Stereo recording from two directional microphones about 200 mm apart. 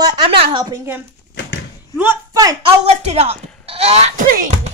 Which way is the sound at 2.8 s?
30° right (ahead or behind).